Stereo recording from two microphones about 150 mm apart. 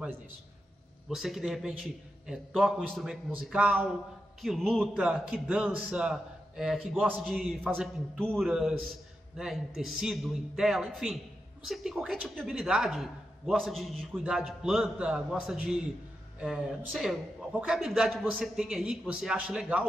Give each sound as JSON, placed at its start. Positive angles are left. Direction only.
{"t": 1.1, "sound": "a man's voice", "side_deg": 0}